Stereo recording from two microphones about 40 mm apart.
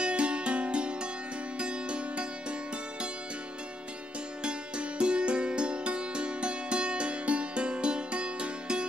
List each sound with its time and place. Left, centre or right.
0.0 s music: right
4.4 s music: right